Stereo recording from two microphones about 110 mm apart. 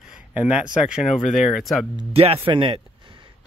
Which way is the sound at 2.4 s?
50° right (ahead or behind).